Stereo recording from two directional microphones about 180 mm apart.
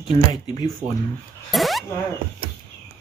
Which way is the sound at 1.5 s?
Centre (ahead or behind).